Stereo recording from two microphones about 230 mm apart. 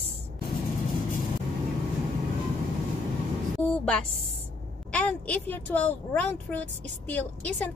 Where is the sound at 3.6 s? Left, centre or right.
Centre.